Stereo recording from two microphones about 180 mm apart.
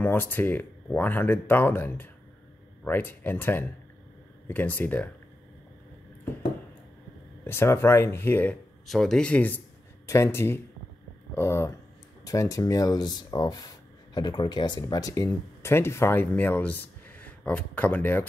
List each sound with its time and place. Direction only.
0.0 s speech: 10° left (ahead or behind)
7.4 s speech: 15° left (ahead or behind)
8.8 s speech: centre (ahead or behind)